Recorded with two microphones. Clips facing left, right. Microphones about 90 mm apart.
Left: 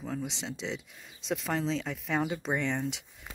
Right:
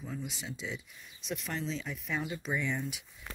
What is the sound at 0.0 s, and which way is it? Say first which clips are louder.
Speech: left 5 dB; 90° left.